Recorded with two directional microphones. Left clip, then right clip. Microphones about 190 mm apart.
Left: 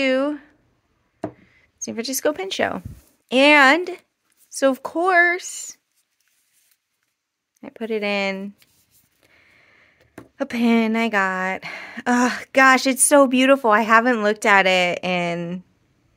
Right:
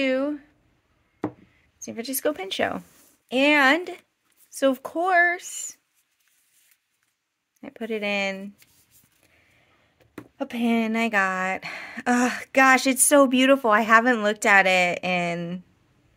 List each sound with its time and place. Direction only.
0.0 s a sound: 25° left (ahead or behind)
1.8 s speech: 20° left (ahead or behind)
3.3 s speech: 20° left (ahead or behind)
7.6 s speech: 10° left (ahead or behind)
9.2 s a sound: 20° left (ahead or behind)
10.3 s speech: 30° left (ahead or behind); by 15.6 s 10° left (ahead or behind)